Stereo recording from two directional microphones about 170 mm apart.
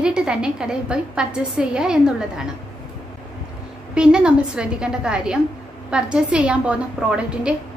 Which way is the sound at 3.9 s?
5° right (ahead or behind).